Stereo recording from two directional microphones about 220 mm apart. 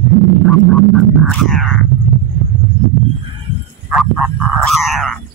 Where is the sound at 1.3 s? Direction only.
Centre (ahead or behind).